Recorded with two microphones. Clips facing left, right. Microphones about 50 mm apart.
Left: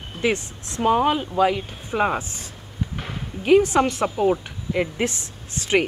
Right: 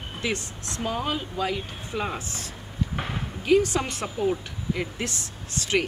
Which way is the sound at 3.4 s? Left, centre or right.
Left.